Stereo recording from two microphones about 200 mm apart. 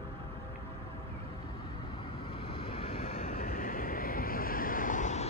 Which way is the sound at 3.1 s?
45° left (ahead or behind).